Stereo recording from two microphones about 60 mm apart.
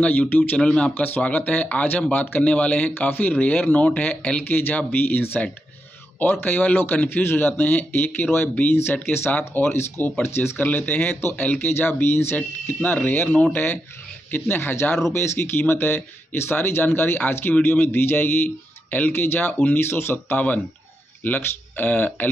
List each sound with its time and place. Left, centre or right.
0.0 s speech: left
0.6 s speech: centre
0.9 s speech: left
4.5 s speech: left
6.4 s speech: left
10.6 s speech: left